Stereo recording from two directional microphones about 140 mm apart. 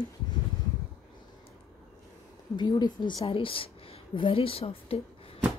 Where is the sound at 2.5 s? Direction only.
30° left (ahead or behind).